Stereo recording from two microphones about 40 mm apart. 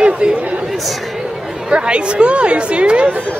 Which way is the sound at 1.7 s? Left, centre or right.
Right.